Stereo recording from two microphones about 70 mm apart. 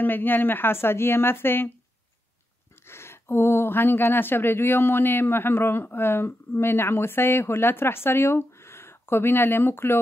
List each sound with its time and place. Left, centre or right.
0.0 s speech: left
2.9 s speech: left